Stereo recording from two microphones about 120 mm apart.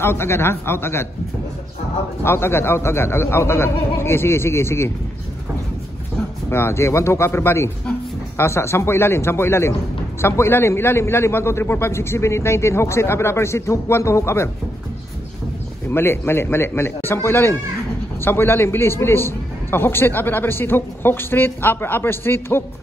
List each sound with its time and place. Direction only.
0.0 s a man's voice: 20° left (ahead or behind)
2.2 s a man's voice: 20° left (ahead or behind)
6.5 s a man's voice: 20° left (ahead or behind)
15.9 s a man's voice: 20° left (ahead or behind)